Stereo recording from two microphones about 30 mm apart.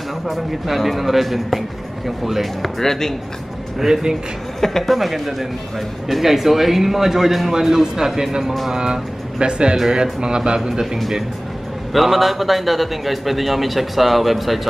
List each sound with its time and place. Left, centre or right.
0.3 s a man's voice: centre
2.8 s speech: centre
3.8 s speech: centre
4.6 s speech: centre
4.8 s a man's voice: centre; by 10.9 s right
11.9 s a man's voice: centre